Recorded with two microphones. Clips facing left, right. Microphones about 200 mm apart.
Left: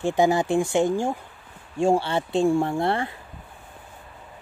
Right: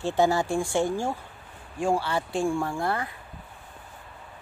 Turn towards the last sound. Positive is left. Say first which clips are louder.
# left 5 dB
turn(degrees=25)  # may be behind; listen again after turning